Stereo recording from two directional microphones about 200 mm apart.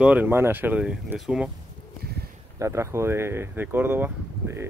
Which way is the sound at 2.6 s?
15° right (ahead or behind).